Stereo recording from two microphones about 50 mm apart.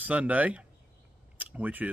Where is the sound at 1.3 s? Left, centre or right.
Right.